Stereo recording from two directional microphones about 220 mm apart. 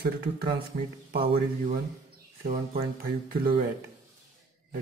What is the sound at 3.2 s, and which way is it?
Speech, 45° right (ahead or behind).